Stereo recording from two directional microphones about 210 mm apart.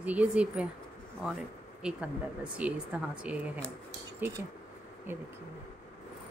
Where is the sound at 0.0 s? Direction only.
5° right (ahead or behind).